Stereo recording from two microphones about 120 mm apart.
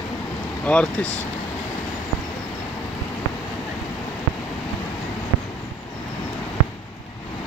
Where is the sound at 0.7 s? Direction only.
10° left (ahead or behind).